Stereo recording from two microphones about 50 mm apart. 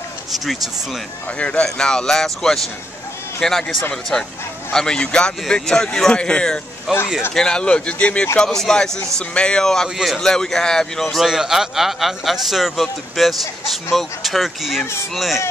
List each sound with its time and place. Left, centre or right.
1.4 s speech: centre
6.9 s speech: centre
7.3 s speech: centre
8.5 s speech: centre
10.0 s a man's voice: centre
10.3 s speech: centre
11.2 s a man's voice: centre